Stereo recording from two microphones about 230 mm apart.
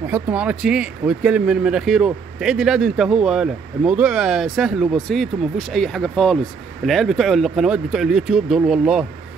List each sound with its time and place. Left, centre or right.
0.0 s speech: centre